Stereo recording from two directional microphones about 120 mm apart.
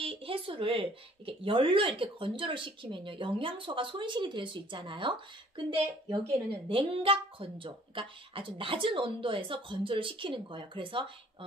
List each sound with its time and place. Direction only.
0.0 s speech: 50° right (ahead or behind)